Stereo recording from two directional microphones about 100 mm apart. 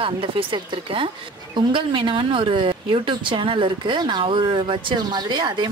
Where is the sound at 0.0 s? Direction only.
60° right (ahead or behind).